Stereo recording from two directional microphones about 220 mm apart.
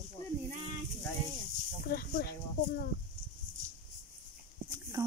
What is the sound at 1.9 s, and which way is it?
Speech, 45° left (ahead or behind).